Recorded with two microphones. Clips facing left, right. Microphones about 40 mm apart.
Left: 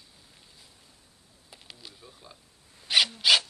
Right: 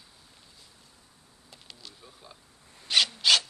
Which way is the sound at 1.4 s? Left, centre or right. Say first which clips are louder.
Left 1 dB; centre.